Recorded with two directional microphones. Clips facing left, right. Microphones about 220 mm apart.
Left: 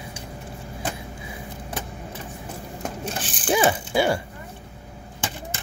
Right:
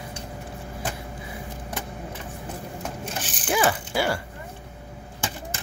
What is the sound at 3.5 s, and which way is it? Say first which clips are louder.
Ratchet: left 3 dB; 25° left (ahead or behind).